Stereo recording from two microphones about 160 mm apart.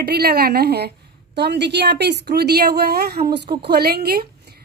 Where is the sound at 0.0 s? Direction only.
80° right.